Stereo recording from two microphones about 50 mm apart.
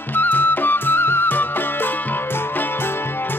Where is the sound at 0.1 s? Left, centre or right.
Left.